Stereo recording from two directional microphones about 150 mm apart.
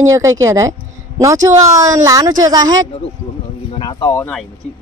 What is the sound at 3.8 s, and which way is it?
Speech, 30° left (ahead or behind).